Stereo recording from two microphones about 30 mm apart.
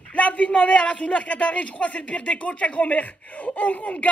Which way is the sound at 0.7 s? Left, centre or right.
Left.